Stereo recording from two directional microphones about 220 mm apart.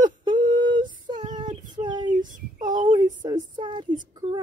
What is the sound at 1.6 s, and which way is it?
Child singing, 20° right (ahead or behind).